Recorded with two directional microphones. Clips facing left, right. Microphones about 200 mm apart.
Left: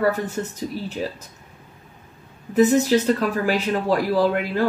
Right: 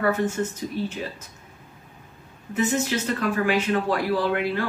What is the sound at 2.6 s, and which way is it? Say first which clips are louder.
Speech: left 8 dB; 35° left (ahead or behind).